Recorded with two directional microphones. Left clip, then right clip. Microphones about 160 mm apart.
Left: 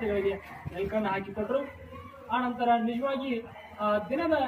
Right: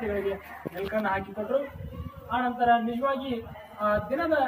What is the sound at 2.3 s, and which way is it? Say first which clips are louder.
A man's voice: right 3 dB; 10° right (ahead or behind).